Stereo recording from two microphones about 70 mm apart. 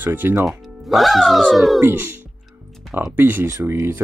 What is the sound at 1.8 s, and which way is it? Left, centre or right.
Speech, right.